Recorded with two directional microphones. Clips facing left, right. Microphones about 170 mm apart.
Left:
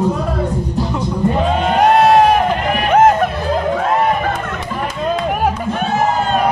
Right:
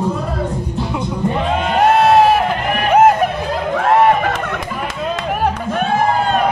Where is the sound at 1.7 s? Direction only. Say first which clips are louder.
Even; centre (ahead or behind).